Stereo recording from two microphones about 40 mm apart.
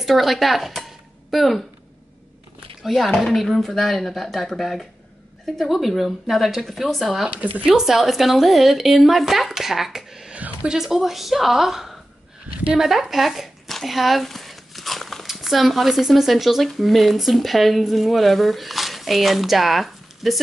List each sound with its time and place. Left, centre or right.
0.0 s speech: centre
2.8 s a woman's voice: centre
7.2 s speech: right
7.6 s a woman's voice: centre
10.3 s music: right
10.7 s a woman's voice: centre